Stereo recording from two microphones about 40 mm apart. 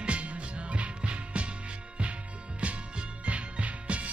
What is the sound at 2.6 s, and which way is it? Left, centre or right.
Music, right.